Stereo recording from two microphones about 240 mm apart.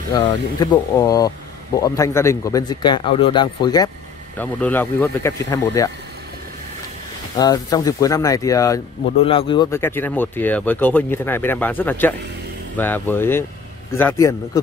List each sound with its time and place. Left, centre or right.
0.1 s speech: centre
4.4 s speech: centre
7.3 s speech: centre